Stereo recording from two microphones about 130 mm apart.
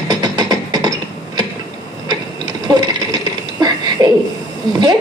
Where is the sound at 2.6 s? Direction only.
30° right (ahead or behind).